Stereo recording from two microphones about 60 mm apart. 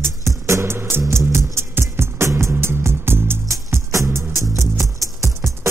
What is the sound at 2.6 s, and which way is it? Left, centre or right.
Music, right.